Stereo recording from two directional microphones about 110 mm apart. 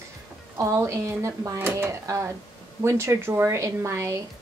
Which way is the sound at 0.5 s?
25° right (ahead or behind).